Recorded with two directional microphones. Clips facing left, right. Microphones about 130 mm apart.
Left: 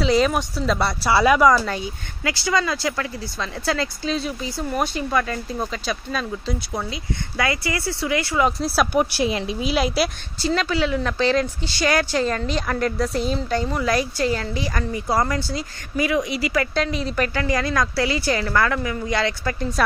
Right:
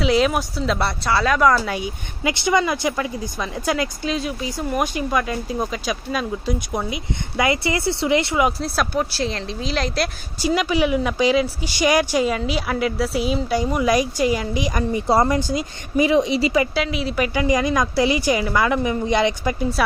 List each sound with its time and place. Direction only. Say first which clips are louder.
0.0 s speech: even; 5° right (ahead or behind)
1.1 s speech: left 4 dB; 10° left (ahead or behind)
1.4 s speech: left 1 dB; 5° right (ahead or behind); by 8.5 s 20° right (ahead or behind)
8.5 s speech: left 1 dB; centre (ahead or behind)
8.9 s speech: left 3 dB; 15° left (ahead or behind)
10.4 s speech: right 2 dB; 15° right (ahead or behind)
16.7 s speech: right 1 dB; 5° right (ahead or behind)